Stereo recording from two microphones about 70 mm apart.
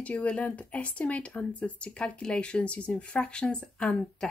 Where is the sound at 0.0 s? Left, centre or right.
Centre.